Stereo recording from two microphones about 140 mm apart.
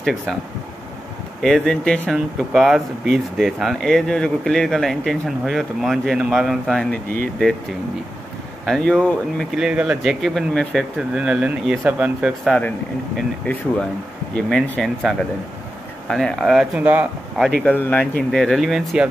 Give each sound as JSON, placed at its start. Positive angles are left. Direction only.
{"t": 0.0, "sound": "speech", "side_deg": 0}
{"t": 1.4, "sound": "speech", "side_deg": 5}
{"t": 8.6, "sound": "speech", "side_deg": 5}
{"t": 9.7, "sound": "speech", "side_deg": -5}
{"t": 14.3, "sound": "speech", "side_deg": 5}
{"t": 17.6, "sound": "speech", "side_deg": 10}